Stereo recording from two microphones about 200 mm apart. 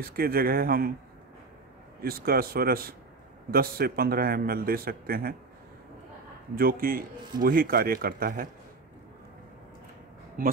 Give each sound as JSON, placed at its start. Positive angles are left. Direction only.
{"t": 0.0, "sound": "speech", "side_deg": -50}
{"t": 2.0, "sound": "speech", "side_deg": -50}
{"t": 6.5, "sound": "speech", "side_deg": -45}
{"t": 10.4, "sound": "speech", "side_deg": -45}